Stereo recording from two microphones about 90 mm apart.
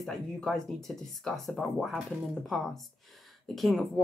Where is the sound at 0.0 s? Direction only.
5° left (ahead or behind).